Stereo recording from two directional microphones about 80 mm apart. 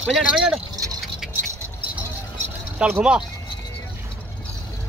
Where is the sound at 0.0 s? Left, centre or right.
Centre.